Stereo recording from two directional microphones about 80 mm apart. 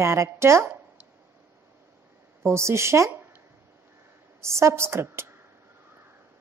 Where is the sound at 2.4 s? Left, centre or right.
Right.